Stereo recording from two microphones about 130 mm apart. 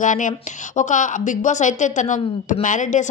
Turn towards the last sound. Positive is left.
turn(degrees=70)  # may be behind; listen again after turning